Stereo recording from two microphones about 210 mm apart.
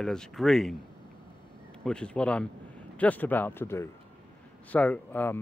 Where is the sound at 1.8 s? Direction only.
5° left (ahead or behind).